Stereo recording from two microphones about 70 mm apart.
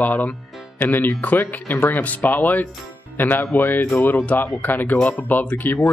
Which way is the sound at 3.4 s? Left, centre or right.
Left.